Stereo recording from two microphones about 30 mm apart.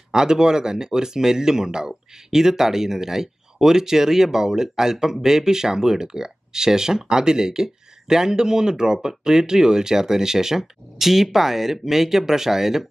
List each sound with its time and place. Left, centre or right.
0.1 s speech: right